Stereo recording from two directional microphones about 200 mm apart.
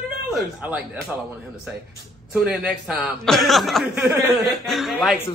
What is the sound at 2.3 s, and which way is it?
A man's voice, centre (ahead or behind).